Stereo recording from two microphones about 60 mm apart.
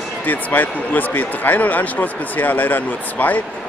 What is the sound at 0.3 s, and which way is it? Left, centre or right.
Speech, left.